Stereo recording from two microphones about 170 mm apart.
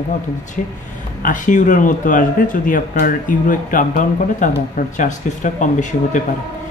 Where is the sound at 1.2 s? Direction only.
50° left (ahead or behind).